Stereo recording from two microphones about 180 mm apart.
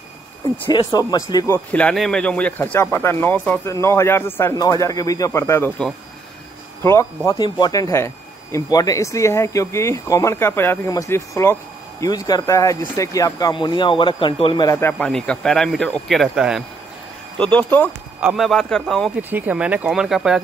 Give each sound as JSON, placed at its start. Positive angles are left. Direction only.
{"t": 0.7, "sound": "speech", "side_deg": 20}
{"t": 1.7, "sound": "speech", "side_deg": 5}
{"t": 18.2, "sound": "a man's voice", "side_deg": 0}
{"t": 19.3, "sound": "speech", "side_deg": -10}